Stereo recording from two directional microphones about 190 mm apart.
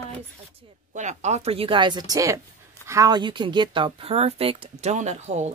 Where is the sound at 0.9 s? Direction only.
40° right (ahead or behind).